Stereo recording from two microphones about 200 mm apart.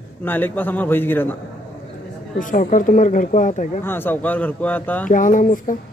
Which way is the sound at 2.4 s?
40° left (ahead or behind).